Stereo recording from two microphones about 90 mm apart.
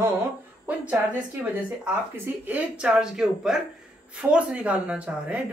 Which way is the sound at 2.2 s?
20° right (ahead or behind).